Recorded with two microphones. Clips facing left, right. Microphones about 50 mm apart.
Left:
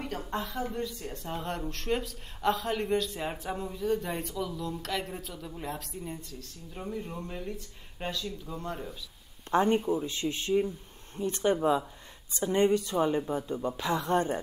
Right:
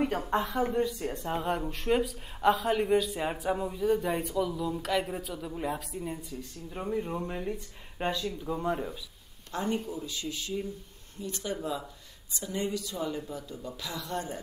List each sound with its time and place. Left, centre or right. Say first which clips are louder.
0.0 s a woman's voice: right 6 dB; right
6.7 s speech: right 5 dB; centre
9.5 s a woman's voice: left 7 dB; left